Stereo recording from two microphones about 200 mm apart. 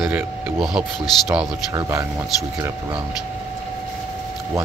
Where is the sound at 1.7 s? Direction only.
20° right (ahead or behind).